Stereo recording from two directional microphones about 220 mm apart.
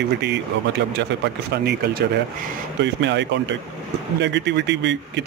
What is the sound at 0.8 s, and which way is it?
Speech, 50° right (ahead or behind).